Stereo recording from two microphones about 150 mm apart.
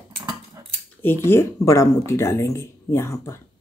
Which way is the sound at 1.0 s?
15° left (ahead or behind).